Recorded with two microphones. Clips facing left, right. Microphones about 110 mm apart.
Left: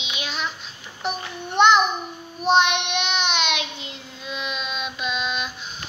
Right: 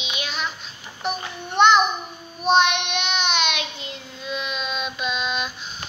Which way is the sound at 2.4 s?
25° left (ahead or behind).